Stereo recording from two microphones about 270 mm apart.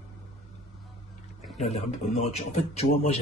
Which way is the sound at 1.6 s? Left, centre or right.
Left.